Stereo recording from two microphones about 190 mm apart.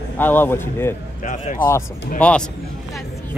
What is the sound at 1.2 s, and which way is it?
Speech, 45° left (ahead or behind).